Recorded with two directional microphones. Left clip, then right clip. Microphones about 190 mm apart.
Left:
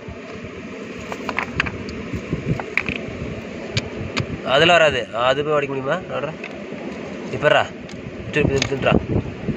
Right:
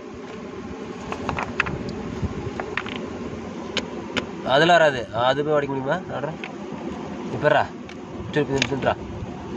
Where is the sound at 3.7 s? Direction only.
Centre (ahead or behind).